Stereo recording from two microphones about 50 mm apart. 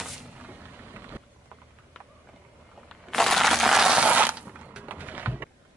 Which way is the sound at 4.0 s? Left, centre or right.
Right.